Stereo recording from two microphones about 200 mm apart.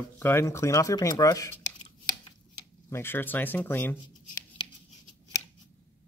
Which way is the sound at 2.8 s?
10° left (ahead or behind).